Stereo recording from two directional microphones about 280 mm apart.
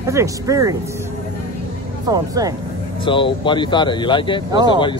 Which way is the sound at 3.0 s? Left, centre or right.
Centre.